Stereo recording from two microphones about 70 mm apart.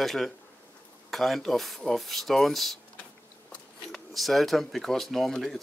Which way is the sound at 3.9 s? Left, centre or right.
Centre.